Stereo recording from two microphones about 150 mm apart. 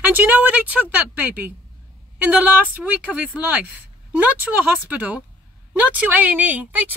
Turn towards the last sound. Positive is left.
turn(degrees=-10)  # may be behind; listen again after turning